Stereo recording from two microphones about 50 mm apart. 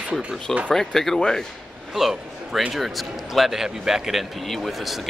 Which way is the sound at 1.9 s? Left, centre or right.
Centre.